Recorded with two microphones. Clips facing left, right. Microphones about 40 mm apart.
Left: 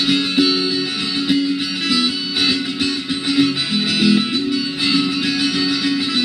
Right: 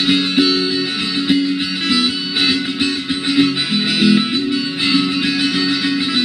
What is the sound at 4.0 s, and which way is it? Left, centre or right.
Music, centre.